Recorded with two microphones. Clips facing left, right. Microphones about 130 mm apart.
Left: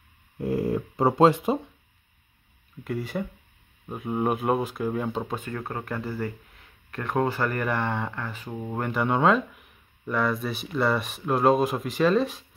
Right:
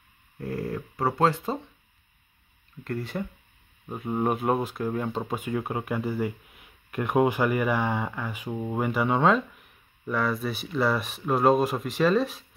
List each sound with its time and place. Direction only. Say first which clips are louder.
0.4 s speech: left 6 dB; 15° left (ahead or behind)
2.8 s speech: left 1 dB; 5° left (ahead or behind)
5.3 s speech: right 3 dB; 10° right (ahead or behind)